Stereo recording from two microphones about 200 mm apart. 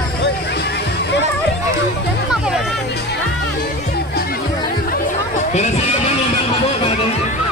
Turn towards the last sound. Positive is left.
turn(degrees=35)  # may be behind; listen again after turning